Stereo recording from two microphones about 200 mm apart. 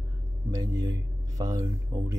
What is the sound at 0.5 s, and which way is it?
Speech, 15° right (ahead or behind).